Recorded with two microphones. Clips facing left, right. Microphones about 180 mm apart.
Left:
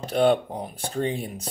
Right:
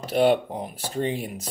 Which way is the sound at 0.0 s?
5° right (ahead or behind).